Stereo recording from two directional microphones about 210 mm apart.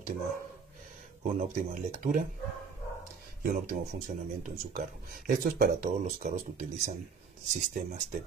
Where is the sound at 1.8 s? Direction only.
40° right (ahead or behind).